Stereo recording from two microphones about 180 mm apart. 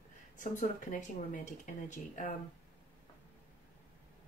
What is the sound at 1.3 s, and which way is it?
Speech, 45° left (ahead or behind).